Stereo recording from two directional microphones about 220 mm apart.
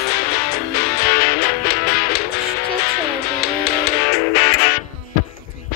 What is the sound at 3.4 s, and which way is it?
Music, 45° left (ahead or behind).